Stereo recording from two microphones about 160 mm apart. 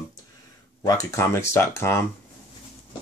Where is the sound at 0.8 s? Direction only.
20° left (ahead or behind).